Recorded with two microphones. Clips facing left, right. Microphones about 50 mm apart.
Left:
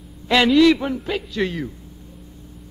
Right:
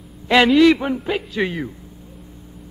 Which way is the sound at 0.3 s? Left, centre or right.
Centre.